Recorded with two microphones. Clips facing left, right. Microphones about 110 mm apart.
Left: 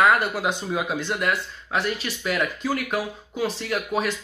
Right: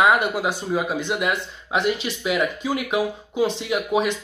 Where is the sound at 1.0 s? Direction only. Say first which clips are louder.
Right 2 dB; 15° right (ahead or behind).